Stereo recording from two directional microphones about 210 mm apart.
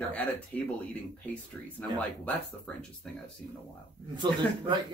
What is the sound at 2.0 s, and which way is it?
Speech, 5° left (ahead or behind).